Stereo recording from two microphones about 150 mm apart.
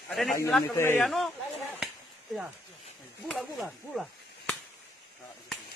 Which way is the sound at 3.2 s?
Centre (ahead or behind).